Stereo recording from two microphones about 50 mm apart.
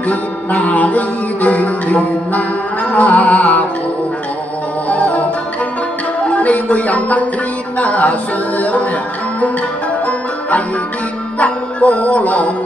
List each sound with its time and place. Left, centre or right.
0.1 s music: left
4.8 s music: left
6.2 s music: left
11.3 s music: left